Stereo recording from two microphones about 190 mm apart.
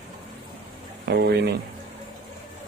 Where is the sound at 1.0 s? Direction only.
60° right (ahead or behind).